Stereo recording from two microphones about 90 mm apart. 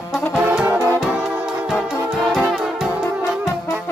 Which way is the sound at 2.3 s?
Centre (ahead or behind).